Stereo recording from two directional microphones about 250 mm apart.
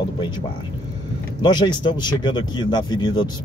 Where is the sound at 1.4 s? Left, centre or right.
Centre.